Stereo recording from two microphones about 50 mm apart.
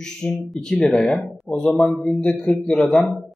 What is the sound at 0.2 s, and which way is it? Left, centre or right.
A man's voice, centre.